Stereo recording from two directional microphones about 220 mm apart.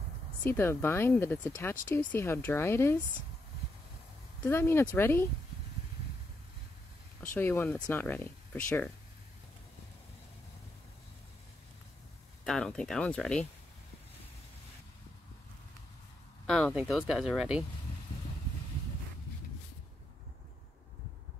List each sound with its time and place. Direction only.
0.4 s speech: 10° left (ahead or behind)
4.5 s speech: 10° left (ahead or behind)
7.2 s speech: 10° left (ahead or behind)
12.4 s speech: 5° left (ahead or behind)
16.4 s speech: centre (ahead or behind)